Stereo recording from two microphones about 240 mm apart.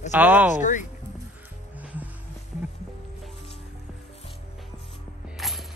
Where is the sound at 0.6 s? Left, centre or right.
Left.